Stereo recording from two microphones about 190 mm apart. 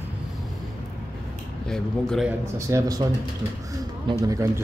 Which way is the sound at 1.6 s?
5° left (ahead or behind).